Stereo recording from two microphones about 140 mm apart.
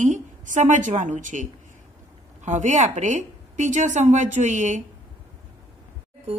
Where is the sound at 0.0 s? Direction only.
60° right (ahead or behind).